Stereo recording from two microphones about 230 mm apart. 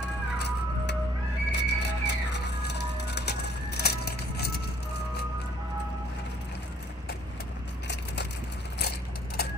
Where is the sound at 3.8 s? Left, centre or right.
Left.